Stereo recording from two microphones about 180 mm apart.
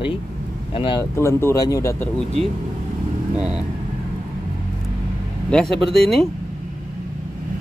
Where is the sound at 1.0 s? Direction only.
15° left (ahead or behind).